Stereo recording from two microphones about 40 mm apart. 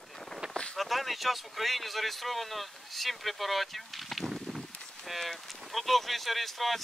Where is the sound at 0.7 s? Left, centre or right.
Centre.